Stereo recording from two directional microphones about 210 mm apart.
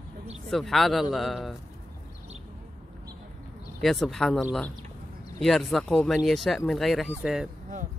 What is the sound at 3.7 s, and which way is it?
Speech, centre (ahead or behind).